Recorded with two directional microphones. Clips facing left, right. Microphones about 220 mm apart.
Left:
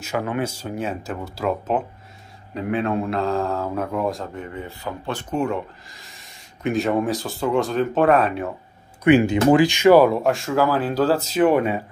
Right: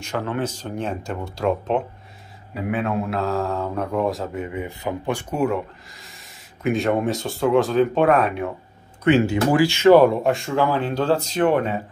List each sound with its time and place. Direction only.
0.0 s speech: 10° left (ahead or behind)
9.0 s speech: 15° left (ahead or behind)
10.2 s speech: centre (ahead or behind)